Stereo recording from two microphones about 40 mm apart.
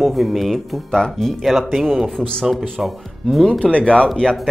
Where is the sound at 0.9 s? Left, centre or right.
Centre.